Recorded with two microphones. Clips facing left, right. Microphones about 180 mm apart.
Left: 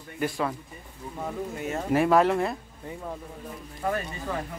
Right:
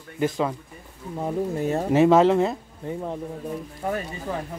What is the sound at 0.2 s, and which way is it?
Speech, 20° right (ahead or behind).